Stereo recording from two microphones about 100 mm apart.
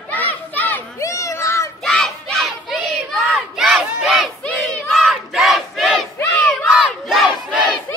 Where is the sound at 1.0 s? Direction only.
30° left (ahead or behind).